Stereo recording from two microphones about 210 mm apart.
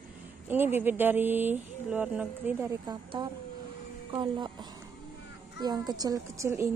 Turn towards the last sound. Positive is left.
turn(degrees=-15)  # may be behind; listen again after turning